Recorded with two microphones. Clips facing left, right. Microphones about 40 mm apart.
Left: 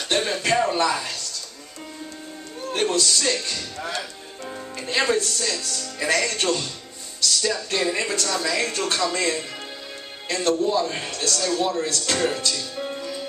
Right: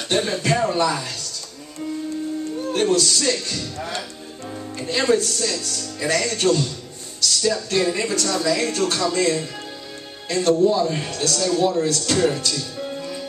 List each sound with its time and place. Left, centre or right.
0.1 s speech: centre
2.7 s speech: centre
12.7 s music: centre